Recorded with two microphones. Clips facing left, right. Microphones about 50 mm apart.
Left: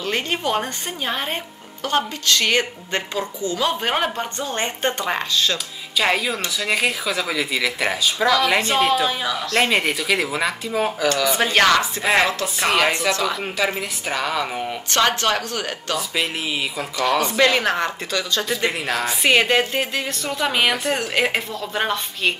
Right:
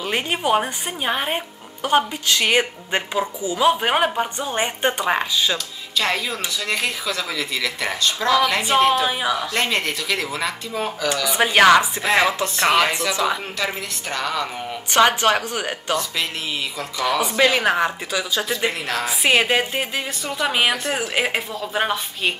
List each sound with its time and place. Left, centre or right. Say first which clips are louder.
0.0 s speech: right 1 dB; centre
5.9 s speech: left 2 dB; centre
8.6 s a woman's voice: right 1 dB; centre
9.6 s speech: left 3 dB; centre
11.3 s speech: right 6 dB; centre
12.5 s a woman's voice: right 1 dB; centre
13.1 s speech: right 1 dB; centre
13.6 s speech: left 3 dB; centre
14.9 s speech: right 4 dB; centre
16.7 s speech: left 1 dB; centre
17.2 s a woman's voice: right 1 dB; centre